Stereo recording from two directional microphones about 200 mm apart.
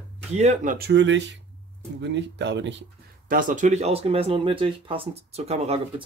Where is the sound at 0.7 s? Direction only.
60° right (ahead or behind).